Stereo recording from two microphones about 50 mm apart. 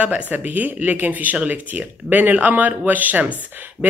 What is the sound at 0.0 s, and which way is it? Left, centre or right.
Speech, right.